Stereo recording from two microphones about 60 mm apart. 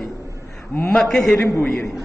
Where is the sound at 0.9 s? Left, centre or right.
Centre.